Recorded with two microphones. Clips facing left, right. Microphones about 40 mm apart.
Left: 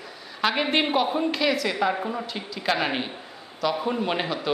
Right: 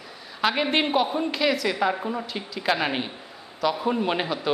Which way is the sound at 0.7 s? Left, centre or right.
Centre.